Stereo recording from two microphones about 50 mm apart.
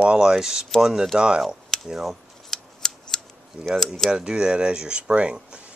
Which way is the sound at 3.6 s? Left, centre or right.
Right.